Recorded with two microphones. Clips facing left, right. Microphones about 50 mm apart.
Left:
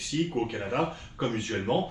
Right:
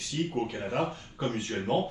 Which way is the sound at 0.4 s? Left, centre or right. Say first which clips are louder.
Left 1 dB; centre.